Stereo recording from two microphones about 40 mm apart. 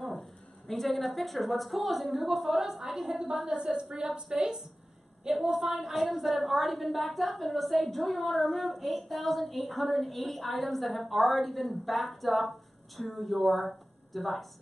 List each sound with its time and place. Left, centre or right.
0.0 s a woman's voice: centre